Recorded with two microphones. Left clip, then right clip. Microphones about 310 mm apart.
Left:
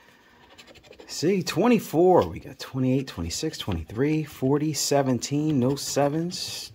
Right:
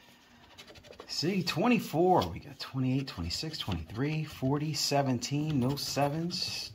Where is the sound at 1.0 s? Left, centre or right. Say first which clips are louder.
Left 7 dB; left.